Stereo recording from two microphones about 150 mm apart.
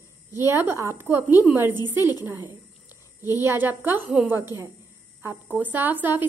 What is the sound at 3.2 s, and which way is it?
Speech, 20° left (ahead or behind).